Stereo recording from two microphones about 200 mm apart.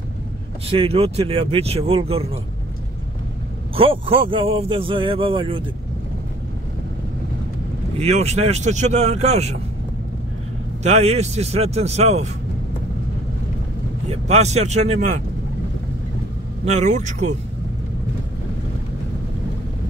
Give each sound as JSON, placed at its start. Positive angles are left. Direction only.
{"t": 0.7, "sound": "a man's voice", "side_deg": -30}
{"t": 3.7, "sound": "a man's voice", "side_deg": -25}
{"t": 8.0, "sound": "speech", "side_deg": -35}
{"t": 10.8, "sound": "speech", "side_deg": -35}
{"t": 14.0, "sound": "speech", "side_deg": -30}
{"t": 16.6, "sound": "speech", "side_deg": -35}